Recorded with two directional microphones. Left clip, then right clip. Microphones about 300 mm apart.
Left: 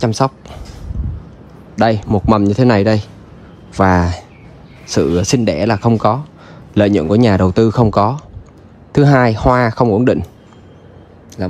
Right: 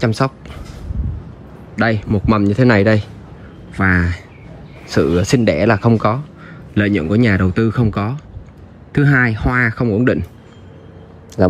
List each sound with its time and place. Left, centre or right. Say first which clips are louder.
0.0 s speech: left 2 dB; centre
1.8 s speech: left 4 dB; centre